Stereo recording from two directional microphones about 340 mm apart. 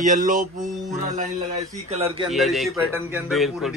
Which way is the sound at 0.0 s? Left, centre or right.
Right.